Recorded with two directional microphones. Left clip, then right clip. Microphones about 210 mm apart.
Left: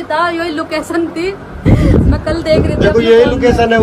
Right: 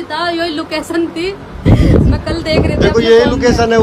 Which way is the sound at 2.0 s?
20° right (ahead or behind).